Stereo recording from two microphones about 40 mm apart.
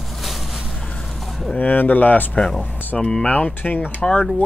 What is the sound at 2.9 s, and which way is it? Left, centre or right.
Speech, left.